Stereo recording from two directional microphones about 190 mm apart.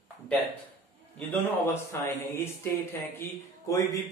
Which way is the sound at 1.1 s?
10° left (ahead or behind).